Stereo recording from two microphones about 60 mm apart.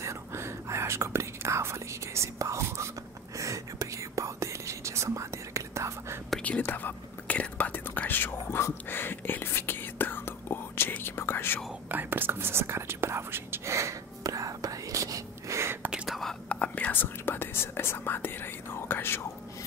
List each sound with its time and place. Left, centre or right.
0.0 s whispering: right
6.6 s whispering: left
11.9 s whispering: right
16.1 s whispering: centre
16.4 s whispering: left
16.9 s whispering: left